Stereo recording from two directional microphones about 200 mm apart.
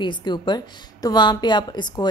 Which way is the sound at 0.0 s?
20° left (ahead or behind).